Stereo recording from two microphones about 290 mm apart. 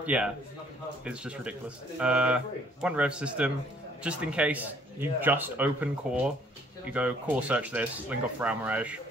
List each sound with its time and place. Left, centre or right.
0.0 s a man's voice: centre
6.9 s speech: centre